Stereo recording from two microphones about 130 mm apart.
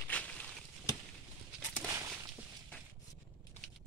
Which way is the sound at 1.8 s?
20° right (ahead or behind).